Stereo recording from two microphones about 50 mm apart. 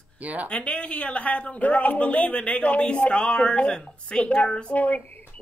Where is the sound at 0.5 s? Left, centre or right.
Left.